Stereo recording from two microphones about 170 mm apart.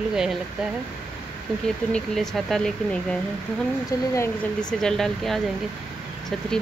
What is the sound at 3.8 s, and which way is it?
Speech, 20° left (ahead or behind).